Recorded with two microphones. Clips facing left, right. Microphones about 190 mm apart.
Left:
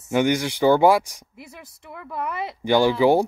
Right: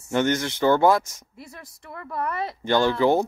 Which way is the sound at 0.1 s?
10° left (ahead or behind).